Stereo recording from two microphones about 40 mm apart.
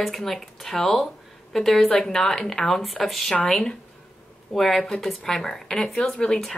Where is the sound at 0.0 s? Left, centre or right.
Centre.